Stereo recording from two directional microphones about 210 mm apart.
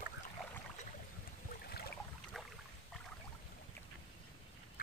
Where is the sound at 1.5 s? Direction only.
50° left (ahead or behind).